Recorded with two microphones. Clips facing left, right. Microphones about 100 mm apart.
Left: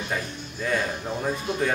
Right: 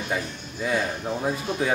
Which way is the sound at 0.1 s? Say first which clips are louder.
Right 1 dB; 10° right (ahead or behind).